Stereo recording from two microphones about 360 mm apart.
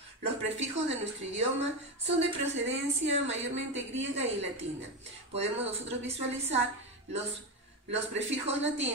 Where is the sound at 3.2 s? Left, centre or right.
Right.